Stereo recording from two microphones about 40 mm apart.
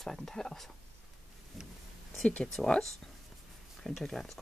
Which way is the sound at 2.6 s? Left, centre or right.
Centre.